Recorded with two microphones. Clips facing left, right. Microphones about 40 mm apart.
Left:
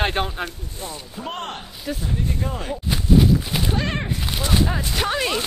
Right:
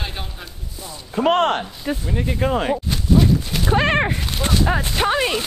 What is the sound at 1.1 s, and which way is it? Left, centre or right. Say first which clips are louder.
Speech: right 16 dB; right.